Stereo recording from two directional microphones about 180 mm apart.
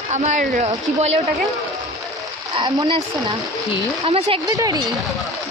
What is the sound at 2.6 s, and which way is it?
Speech, 25° right (ahead or behind).